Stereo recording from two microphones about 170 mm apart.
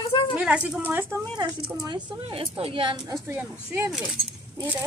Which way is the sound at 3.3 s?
15° right (ahead or behind).